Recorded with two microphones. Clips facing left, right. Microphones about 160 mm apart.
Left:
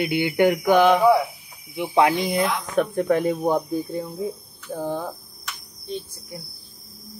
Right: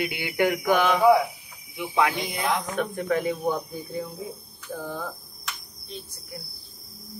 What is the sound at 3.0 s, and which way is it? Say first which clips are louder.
Speech: left 4 dB; 45° left (ahead or behind).